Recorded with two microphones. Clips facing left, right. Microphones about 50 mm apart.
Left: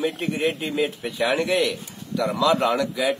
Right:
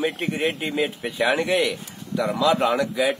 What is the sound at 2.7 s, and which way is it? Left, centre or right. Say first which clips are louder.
Speech: right 1 dB; centre.